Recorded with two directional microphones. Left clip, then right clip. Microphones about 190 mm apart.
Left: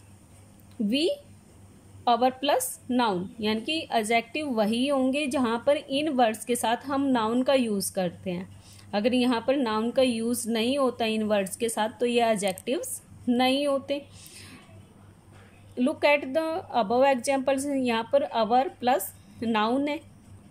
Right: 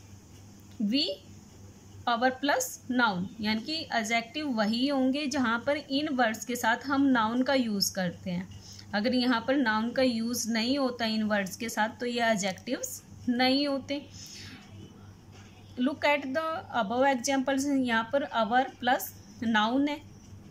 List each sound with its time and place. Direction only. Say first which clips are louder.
0.8 s a woman's voice: left 3 dB; 20° left (ahead or behind)
15.7 s a woman's voice: left 4 dB; 15° left (ahead or behind)